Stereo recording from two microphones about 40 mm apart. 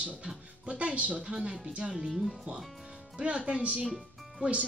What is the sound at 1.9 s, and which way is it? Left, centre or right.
Speech, centre.